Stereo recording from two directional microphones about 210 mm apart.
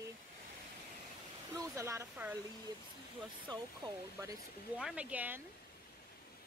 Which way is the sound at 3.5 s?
15° right (ahead or behind).